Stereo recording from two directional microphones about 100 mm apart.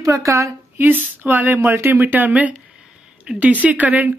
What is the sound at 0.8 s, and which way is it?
Speech, 20° right (ahead or behind).